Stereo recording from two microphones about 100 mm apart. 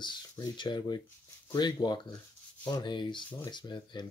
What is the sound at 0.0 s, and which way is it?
Speech, 50° left (ahead or behind).